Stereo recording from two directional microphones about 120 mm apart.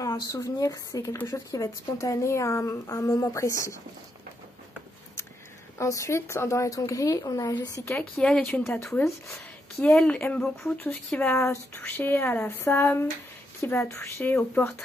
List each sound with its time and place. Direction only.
0.0 s a woman's voice: 30° left (ahead or behind)
5.8 s a woman's voice: 25° left (ahead or behind)
7.9 s a woman's voice: 10° left (ahead or behind)